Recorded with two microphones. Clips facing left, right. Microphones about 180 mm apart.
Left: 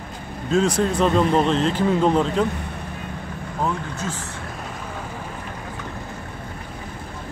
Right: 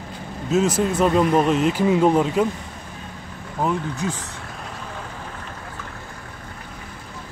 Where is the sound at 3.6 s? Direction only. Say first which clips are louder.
Right 3 dB; 15° right (ahead or behind).